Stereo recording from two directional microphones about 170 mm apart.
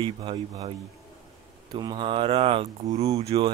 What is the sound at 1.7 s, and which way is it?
Speech, 25° right (ahead or behind).